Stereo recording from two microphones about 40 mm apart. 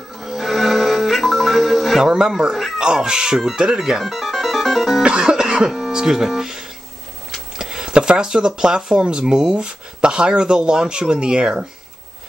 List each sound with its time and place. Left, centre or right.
0.2 s music: centre
2.0 s speech: centre
4.0 s music: centre
5.0 s music: right
5.7 s speech: centre